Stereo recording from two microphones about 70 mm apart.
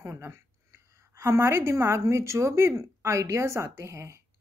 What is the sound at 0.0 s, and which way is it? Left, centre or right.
A woman's voice, right.